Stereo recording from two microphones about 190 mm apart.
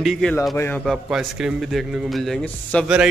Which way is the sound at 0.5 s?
10° left (ahead or behind).